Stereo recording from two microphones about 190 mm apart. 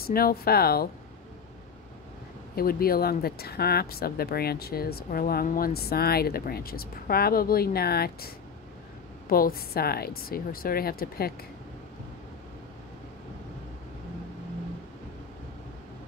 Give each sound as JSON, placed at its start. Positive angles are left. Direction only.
{"t": 0.0, "sound": "speech", "side_deg": 50}
{"t": 2.5, "sound": "speech", "side_deg": 50}
{"t": 9.3, "sound": "speech", "side_deg": 50}